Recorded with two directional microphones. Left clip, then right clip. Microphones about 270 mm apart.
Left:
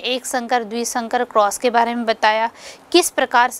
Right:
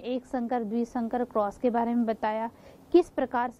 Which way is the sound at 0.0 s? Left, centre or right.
Centre.